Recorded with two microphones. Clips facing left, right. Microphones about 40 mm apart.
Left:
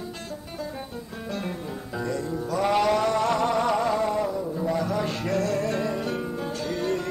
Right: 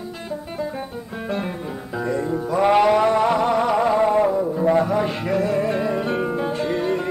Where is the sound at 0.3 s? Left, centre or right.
Right.